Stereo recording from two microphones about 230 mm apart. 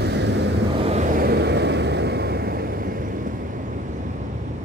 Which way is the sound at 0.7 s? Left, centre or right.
Right.